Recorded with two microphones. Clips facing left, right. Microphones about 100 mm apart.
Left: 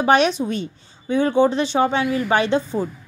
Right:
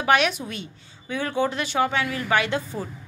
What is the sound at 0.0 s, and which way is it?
A woman's voice, 30° left (ahead or behind).